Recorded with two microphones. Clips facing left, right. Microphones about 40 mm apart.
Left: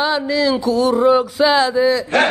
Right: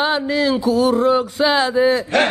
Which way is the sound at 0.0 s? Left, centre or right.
Right.